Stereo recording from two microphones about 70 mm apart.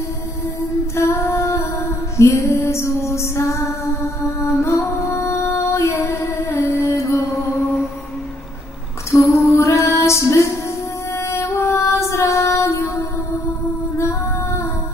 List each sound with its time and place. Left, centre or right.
0.9 s music: left
9.1 s female singing: left
11.1 s music: left